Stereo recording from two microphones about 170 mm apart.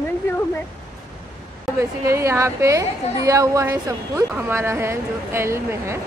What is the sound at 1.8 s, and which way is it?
A woman's voice, 15° right (ahead or behind).